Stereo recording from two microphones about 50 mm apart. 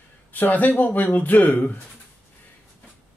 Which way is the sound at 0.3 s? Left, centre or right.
Left.